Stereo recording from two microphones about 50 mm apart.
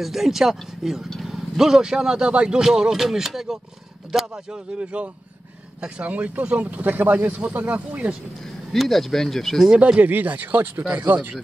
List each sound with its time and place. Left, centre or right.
0.0 s speech: centre
4.1 s a sound: centre
4.5 s speech: right
8.7 s speech: centre
9.7 s speech: centre
9.9 s speech: right